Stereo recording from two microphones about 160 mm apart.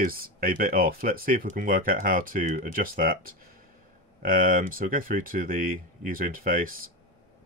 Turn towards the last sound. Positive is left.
turn(degrees=-60)  # may be behind; listen again after turning